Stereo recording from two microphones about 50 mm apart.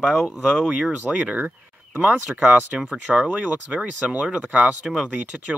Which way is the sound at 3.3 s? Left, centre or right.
Right.